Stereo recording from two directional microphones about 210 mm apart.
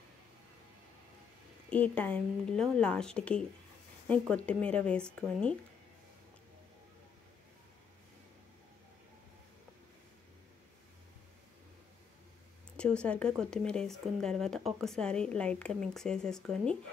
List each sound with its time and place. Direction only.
1.7 s speech: 5° left (ahead or behind)
12.7 s speech: 5° left (ahead or behind)